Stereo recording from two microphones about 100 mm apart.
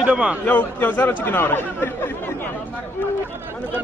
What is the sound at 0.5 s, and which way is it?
Speech, 15° left (ahead or behind).